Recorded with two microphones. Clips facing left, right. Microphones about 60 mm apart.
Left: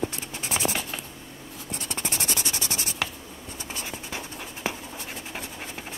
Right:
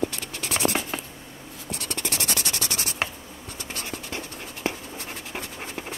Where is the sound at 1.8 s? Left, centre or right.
Right.